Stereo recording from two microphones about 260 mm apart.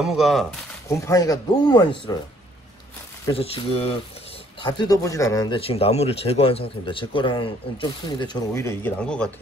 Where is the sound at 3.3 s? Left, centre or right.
Left.